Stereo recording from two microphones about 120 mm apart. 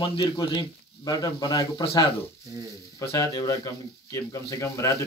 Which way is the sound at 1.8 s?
45° left (ahead or behind).